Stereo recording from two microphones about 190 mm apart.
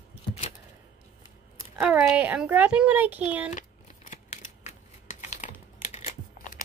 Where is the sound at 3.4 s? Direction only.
40° left (ahead or behind).